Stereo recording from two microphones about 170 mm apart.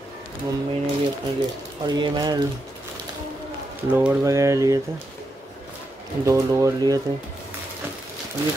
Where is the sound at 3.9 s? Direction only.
15° right (ahead or behind).